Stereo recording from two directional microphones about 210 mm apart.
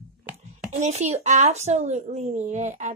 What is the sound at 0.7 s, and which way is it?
Speech, 35° right (ahead or behind).